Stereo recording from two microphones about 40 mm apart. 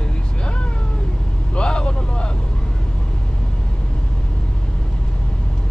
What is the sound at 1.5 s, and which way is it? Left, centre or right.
Vehicle, left.